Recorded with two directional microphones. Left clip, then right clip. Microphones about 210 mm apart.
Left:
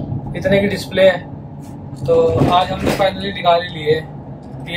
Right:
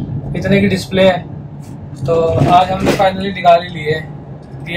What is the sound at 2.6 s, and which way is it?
Speech, centre (ahead or behind).